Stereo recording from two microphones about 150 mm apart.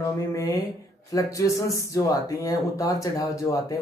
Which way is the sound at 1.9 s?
20° left (ahead or behind).